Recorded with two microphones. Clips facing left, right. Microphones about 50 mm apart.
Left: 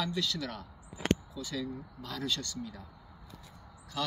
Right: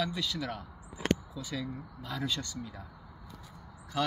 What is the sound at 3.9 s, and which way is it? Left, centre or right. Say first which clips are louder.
Speech: right 4 dB; right.